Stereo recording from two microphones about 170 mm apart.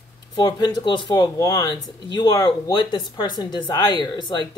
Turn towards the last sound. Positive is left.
turn(degrees=25)  # may be behind; listen again after turning